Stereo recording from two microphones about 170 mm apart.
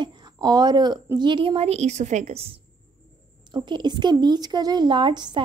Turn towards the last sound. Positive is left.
turn(degrees=-25)  # may be behind; listen again after turning